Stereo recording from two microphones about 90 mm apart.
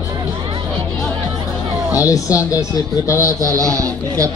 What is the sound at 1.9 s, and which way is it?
Speech, 40° left (ahead or behind).